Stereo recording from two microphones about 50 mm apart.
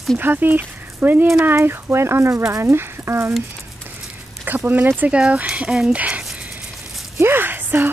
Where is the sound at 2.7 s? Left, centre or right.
Right.